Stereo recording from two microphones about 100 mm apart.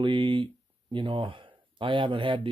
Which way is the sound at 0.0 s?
55° right (ahead or behind).